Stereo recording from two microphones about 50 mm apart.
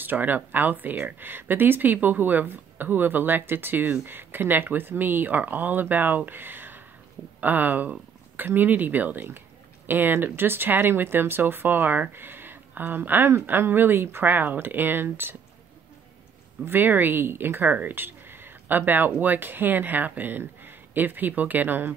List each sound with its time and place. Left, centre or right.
0.0 s speech: right
14.3 s speech: right
16.6 s speech: right
17.6 s speech: right